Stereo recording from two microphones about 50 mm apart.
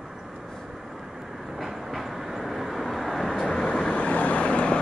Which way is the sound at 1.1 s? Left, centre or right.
Centre.